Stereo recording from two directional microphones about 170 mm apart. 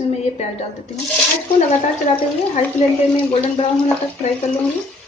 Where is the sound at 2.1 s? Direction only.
45° left (ahead or behind).